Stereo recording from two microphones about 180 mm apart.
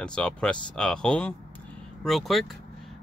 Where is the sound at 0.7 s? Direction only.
5° left (ahead or behind).